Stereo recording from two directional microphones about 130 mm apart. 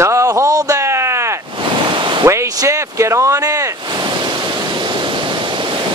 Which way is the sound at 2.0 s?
40° right (ahead or behind).